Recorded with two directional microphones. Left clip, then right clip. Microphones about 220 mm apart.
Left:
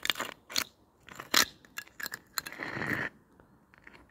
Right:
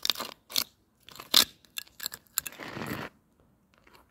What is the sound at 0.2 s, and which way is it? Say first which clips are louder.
Chewing: right 1 dB; 15° right (ahead or behind).